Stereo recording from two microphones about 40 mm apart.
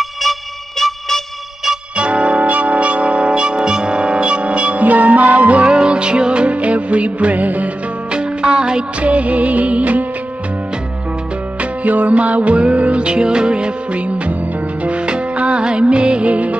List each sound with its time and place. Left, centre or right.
0.0 s music: centre
2.0 s music: right
8.1 s music: right
9.0 s music of bollywood: right
11.8 s music: right